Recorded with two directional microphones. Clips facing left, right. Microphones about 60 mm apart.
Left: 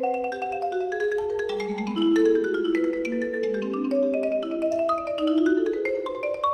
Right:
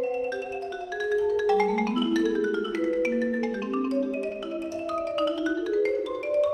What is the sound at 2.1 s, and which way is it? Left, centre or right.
Music, left.